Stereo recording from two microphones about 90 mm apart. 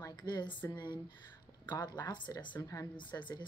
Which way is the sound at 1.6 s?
55° left (ahead or behind).